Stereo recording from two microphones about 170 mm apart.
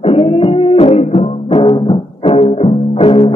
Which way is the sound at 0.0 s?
35° left (ahead or behind).